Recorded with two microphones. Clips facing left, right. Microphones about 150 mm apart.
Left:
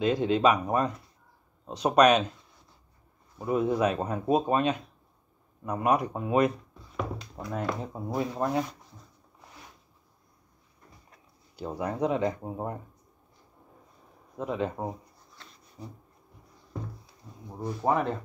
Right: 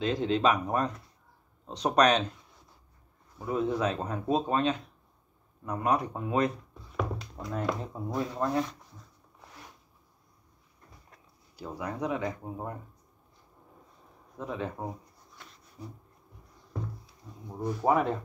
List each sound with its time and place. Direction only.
0.0 s speech: 15° left (ahead or behind)
3.3 s speech: 15° left (ahead or behind)
11.5 s speech: 20° left (ahead or behind)
14.4 s speech: 20° left (ahead or behind)
15.8 s a sound: 35° left (ahead or behind)
17.8 s speech: 5° right (ahead or behind)